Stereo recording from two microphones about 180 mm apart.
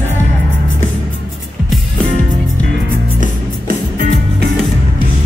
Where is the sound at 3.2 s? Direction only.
50° right (ahead or behind).